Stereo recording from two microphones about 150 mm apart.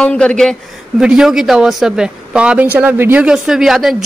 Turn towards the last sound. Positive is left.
turn(degrees=0)  # may be behind; listen again after turning